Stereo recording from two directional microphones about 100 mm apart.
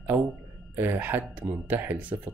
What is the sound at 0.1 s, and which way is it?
Speech, 20° right (ahead or behind).